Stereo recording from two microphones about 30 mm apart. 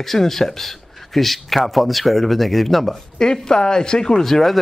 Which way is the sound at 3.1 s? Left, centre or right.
Left.